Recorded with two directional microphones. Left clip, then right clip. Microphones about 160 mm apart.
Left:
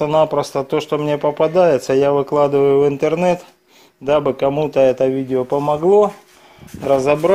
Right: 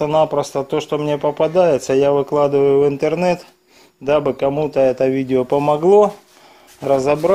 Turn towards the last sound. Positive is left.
turn(degrees=0)  # may be behind; listen again after turning